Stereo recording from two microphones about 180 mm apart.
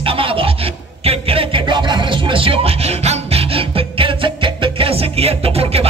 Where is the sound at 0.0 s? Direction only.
30° right (ahead or behind).